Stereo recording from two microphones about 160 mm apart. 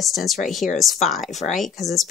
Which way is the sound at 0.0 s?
Centre (ahead or behind).